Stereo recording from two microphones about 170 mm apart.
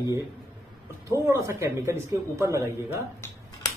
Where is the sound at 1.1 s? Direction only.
15° right (ahead or behind).